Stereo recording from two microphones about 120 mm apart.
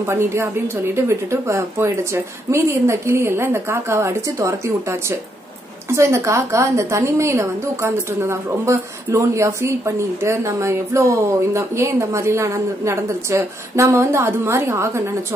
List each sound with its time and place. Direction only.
0.0 s a woman's voice: 20° right (ahead or behind)